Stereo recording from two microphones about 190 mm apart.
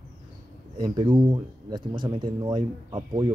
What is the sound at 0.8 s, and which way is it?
Speech, 25° right (ahead or behind).